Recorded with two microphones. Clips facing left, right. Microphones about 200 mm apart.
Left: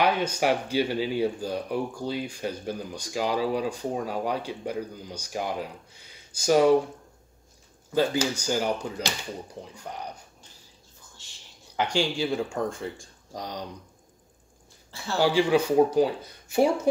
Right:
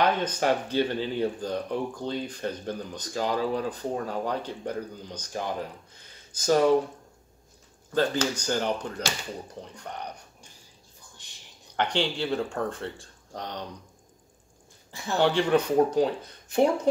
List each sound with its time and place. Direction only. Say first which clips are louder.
0.0 s speech: left 1 dB; 10° left (ahead or behind)
7.9 s speech: left 1 dB; 10° left (ahead or behind)
11.2 s a sound: even; 15° right (ahead or behind)
11.7 s speech: left 1 dB; 10° left (ahead or behind)
14.9 s a man's voice: right 1 dB; 15° right (ahead or behind)
15.1 s speech: left 1 dB; 5° left (ahead or behind)